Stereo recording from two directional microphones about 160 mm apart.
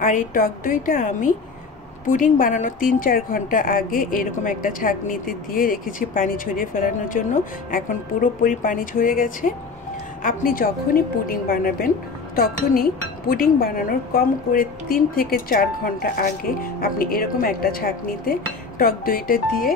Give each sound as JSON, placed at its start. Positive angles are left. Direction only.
{"t": 0.0, "sound": "a woman's voice", "side_deg": 55}